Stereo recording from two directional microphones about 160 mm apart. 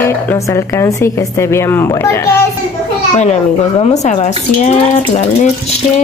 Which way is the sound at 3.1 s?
40° left (ahead or behind).